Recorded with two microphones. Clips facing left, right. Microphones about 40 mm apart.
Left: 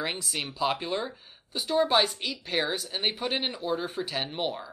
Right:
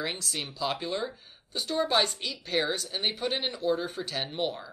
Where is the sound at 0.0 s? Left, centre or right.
Centre.